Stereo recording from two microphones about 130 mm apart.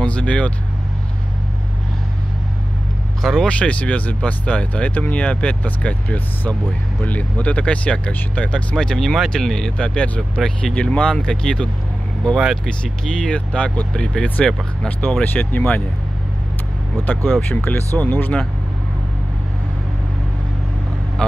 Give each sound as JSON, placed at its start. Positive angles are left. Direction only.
{"t": 0.0, "sound": "speech", "side_deg": 10}
{"t": 3.2, "sound": "speech", "side_deg": 0}
{"t": 13.0, "sound": "speech", "side_deg": 5}
{"t": 17.3, "sound": "speech", "side_deg": 10}